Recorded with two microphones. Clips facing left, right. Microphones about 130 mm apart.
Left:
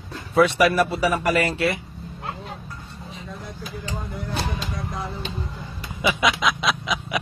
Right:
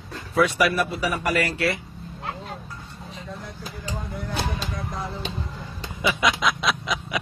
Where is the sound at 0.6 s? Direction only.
35° left (ahead or behind).